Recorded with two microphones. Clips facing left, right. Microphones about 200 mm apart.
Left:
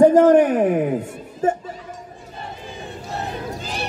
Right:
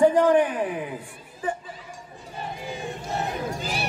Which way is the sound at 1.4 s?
40° left (ahead or behind).